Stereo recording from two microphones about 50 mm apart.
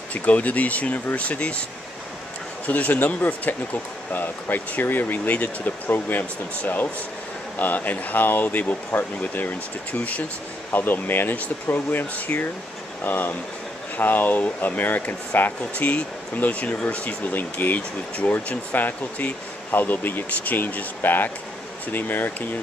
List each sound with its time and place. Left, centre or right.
0.1 s speech: left
2.6 s speech: left
10.7 s speech: left